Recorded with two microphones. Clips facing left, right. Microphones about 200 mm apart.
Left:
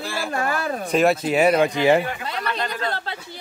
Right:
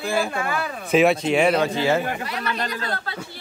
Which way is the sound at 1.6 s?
15° left (ahead or behind).